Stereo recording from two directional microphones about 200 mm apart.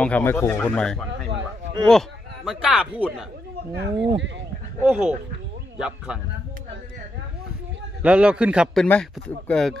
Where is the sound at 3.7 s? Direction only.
55° right (ahead or behind).